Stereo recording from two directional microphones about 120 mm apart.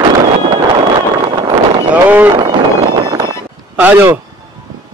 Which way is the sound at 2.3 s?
40° right (ahead or behind).